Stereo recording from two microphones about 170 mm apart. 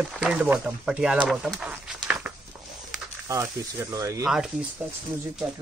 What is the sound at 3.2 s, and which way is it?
Speech, 15° right (ahead or behind).